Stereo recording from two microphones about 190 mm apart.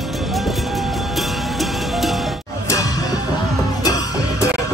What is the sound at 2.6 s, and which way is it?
Music, 20° left (ahead or behind).